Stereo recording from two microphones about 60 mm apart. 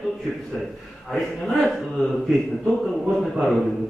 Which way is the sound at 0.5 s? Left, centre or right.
Centre.